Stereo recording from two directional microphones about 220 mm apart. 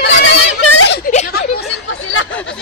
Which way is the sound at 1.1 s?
40° left (ahead or behind).